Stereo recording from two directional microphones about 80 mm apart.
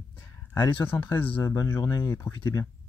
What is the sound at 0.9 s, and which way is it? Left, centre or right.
Speech, left.